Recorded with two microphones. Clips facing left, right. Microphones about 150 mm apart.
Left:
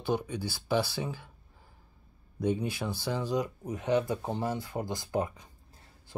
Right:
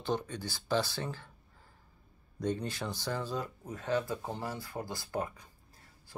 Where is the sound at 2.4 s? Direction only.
10° left (ahead or behind).